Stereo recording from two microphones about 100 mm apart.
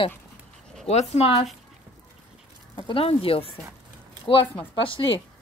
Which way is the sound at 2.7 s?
65° left (ahead or behind).